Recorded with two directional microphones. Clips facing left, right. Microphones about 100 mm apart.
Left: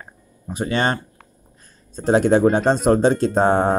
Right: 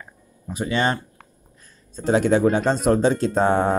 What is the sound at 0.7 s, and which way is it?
Speech, 45° left (ahead or behind).